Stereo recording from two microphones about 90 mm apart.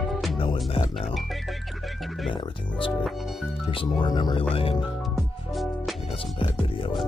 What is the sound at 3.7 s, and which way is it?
Speech, 70° left (ahead or behind).